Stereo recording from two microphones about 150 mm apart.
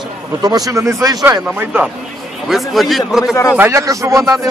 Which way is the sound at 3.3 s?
20° left (ahead or behind).